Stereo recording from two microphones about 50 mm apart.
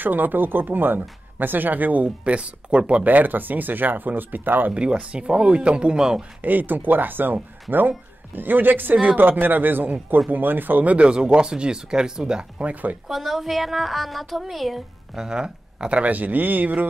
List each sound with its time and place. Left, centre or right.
0.0 s speech: right
3.1 s speech: right
4.7 s speech: right
6.4 s speech: right
8.4 s speech: right
11.1 s speech: centre
13.1 s a woman's voice: centre
15.1 s speech: centre; by 16.8 s right